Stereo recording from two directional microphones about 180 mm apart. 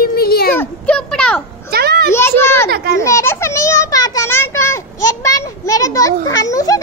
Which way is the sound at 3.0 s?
15° left (ahead or behind).